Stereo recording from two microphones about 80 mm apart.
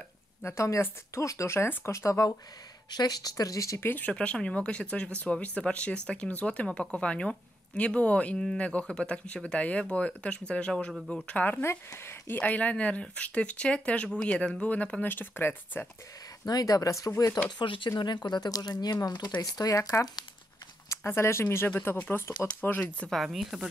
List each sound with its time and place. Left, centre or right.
0.4 s speech: left
2.9 s speech: left
3.8 s speech: left
4.1 s speech: centre
11.6 s speech: left
16.4 s speech: left
17.5 s speech: left
20.9 s speech: left
23.0 s speech: centre